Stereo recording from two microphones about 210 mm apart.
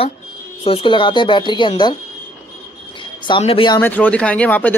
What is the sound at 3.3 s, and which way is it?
Speech, 25° left (ahead or behind).